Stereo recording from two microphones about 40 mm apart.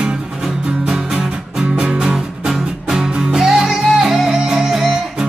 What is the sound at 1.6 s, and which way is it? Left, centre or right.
Music, right.